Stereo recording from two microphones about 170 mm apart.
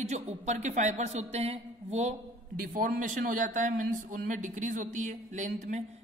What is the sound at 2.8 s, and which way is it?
A man's voice, 50° right (ahead or behind).